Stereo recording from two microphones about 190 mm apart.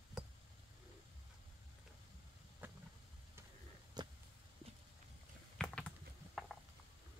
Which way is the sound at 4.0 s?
20° right (ahead or behind).